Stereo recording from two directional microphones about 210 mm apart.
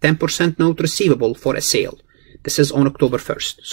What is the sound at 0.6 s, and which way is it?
Speech, 5° right (ahead or behind).